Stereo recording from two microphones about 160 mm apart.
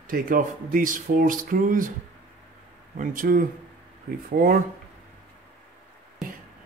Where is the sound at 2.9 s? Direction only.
55° right (ahead or behind).